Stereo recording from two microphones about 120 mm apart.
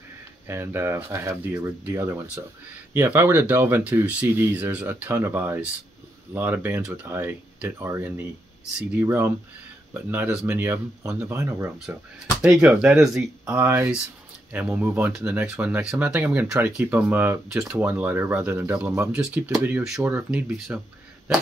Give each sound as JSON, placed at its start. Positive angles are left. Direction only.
{"t": 0.5, "sound": "speech", "side_deg": -20}
{"t": 11.9, "sound": "speech", "side_deg": -10}
{"t": 13.5, "sound": "speech", "side_deg": -20}
{"t": 20.5, "sound": "speech", "side_deg": 0}